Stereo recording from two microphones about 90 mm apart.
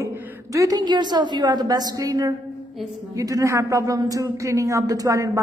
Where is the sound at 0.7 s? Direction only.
55° right (ahead or behind).